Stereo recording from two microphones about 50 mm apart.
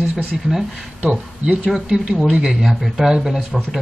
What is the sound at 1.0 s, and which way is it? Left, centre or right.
Speech, right.